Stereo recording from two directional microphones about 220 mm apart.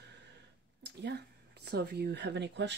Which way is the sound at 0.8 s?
50° right (ahead or behind).